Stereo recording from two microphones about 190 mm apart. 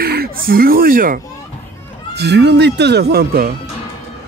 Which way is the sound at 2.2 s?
60° right (ahead or behind).